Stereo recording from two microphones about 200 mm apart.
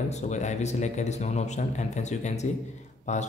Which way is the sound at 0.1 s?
35° left (ahead or behind).